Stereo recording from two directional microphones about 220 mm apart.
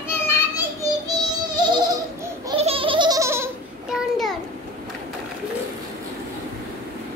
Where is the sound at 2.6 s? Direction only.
25° right (ahead or behind).